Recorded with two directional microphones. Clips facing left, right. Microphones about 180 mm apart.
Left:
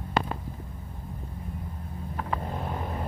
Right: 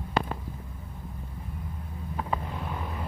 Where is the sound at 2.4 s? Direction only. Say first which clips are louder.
Left 2 dB; 40° left (ahead or behind).